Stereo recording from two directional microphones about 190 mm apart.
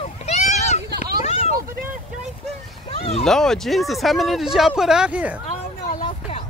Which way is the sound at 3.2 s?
Centre (ahead or behind).